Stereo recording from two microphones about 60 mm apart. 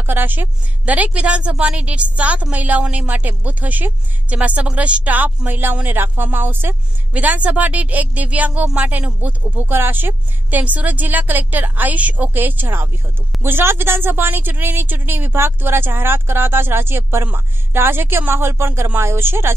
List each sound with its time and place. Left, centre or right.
0.0 s a woman's voice: right
10.6 s a woman's voice: right